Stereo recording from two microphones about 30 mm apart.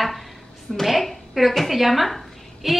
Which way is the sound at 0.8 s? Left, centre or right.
Centre.